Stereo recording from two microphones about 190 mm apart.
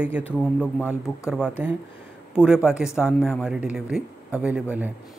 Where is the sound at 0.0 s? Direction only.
5° right (ahead or behind).